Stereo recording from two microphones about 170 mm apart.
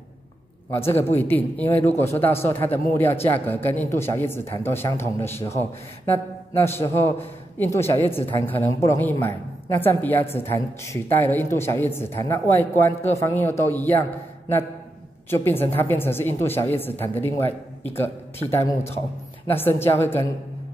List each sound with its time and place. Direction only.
0.7 s a man's voice: 15° left (ahead or behind)
15.2 s a man's voice: 15° left (ahead or behind)